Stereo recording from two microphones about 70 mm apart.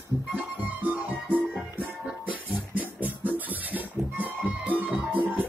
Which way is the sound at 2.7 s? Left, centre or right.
Right.